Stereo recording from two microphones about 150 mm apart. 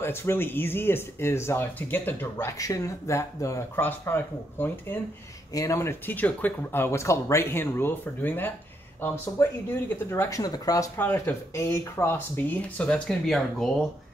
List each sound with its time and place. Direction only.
0.0 s speech: 15° left (ahead or behind)
11.0 s speech: 15° left (ahead or behind)